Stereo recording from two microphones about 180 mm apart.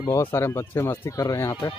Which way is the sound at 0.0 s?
20° left (ahead or behind).